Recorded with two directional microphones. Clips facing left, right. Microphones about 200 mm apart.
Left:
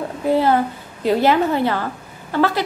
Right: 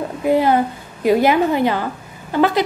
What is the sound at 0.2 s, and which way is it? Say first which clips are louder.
A woman's voice: right 1 dB; 15° right (ahead or behind).